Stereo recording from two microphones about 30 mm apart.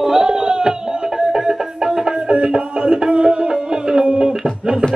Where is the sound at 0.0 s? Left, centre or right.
Right.